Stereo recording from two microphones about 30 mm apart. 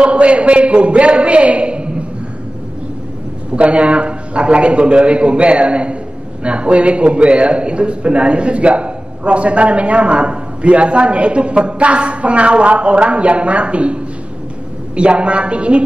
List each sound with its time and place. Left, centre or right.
0.0 s a man's voice: right
3.5 s a man's voice: right